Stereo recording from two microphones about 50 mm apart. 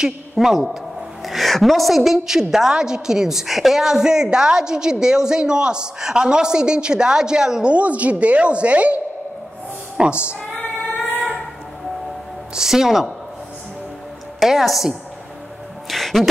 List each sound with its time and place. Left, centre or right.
0.0 s a man's voice: centre
7.7 s a woman's voice: right
12.5 s a woman's voice: centre
14.4 s a man's voice: centre
15.9 s music: centre